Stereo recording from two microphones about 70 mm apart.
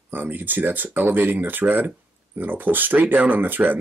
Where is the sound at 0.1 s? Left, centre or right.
Right.